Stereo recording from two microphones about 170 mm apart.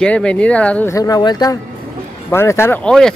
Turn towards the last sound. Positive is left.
turn(degrees=5)  # may be behind; listen again after turning